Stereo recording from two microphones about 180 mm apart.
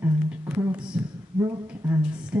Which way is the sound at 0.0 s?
10° right (ahead or behind).